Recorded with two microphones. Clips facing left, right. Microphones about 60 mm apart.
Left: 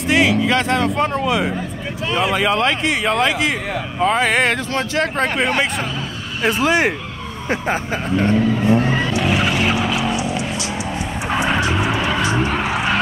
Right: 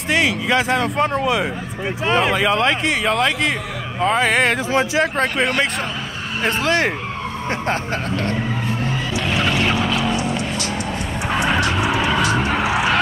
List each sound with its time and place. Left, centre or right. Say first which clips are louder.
0.1 s speech: left 2 dB; centre
2.0 s speech: right 2 dB; right
2.3 s speech: even; centre
6.6 s speech: left 3 dB; centre
9.2 s vehicle: right 2 dB; centre
11.2 s vehicle: even; centre
12.2 s vehicle: even; right